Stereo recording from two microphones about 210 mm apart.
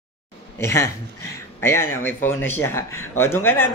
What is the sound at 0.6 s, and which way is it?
Speech, 15° left (ahead or behind).